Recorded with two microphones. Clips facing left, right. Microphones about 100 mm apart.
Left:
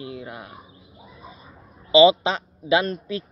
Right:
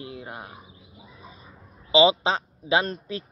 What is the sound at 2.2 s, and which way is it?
Speech, 30° right (ahead or behind).